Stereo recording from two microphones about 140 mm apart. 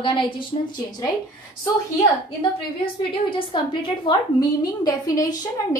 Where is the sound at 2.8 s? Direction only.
40° left (ahead or behind).